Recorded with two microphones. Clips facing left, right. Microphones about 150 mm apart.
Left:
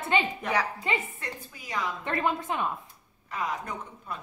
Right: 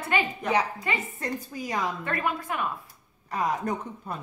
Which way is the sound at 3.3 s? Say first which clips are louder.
Right 5 dB; 40° right (ahead or behind).